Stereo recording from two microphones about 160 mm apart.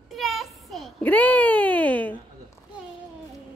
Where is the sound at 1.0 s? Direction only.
10° left (ahead or behind).